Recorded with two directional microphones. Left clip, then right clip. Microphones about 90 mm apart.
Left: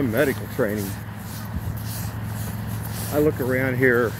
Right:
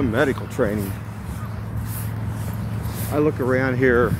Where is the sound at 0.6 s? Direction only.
20° left (ahead or behind).